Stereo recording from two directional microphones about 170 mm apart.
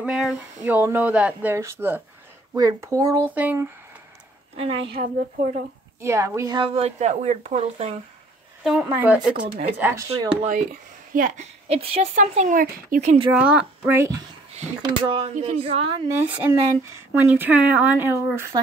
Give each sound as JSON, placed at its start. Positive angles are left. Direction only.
{"t": 0.0, "sound": "speech", "side_deg": -5}
{"t": 4.6, "sound": "speech", "side_deg": -30}
{"t": 4.9, "sound": "speech", "side_deg": -50}
{"t": 5.9, "sound": "speech", "side_deg": -15}
{"t": 6.6, "sound": "speech", "side_deg": -40}
{"t": 8.6, "sound": "speech", "side_deg": -5}
{"t": 10.4, "sound": "speech", "side_deg": -50}
{"t": 11.6, "sound": "speech", "side_deg": -35}
{"t": 13.3, "sound": "speech", "side_deg": -5}
{"t": 14.9, "sound": "speech", "side_deg": -30}
{"t": 16.1, "sound": "speech", "side_deg": -10}